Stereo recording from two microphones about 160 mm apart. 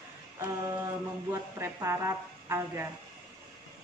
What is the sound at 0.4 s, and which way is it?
A woman's voice, 15° right (ahead or behind).